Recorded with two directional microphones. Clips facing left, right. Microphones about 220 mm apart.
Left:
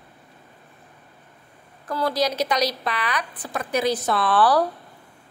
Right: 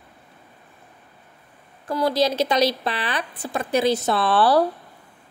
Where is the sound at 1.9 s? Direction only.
25° right (ahead or behind).